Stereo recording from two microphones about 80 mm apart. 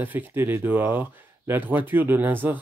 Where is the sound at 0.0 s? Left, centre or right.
Right.